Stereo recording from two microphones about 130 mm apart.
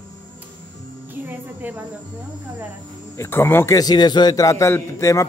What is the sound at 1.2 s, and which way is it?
Speech, 15° right (ahead or behind).